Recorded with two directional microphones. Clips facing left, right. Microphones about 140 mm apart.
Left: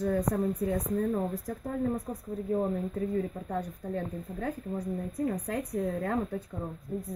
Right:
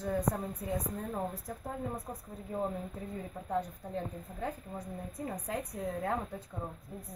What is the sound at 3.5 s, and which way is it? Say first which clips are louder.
Speech: left 1 dB; 15° right (ahead or behind).